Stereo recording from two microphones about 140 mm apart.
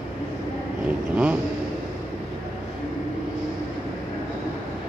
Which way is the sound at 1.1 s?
10° right (ahead or behind).